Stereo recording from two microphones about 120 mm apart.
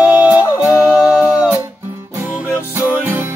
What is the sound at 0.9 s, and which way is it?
Music, 10° right (ahead or behind).